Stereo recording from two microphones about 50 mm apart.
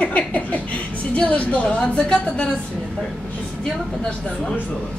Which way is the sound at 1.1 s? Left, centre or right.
Left.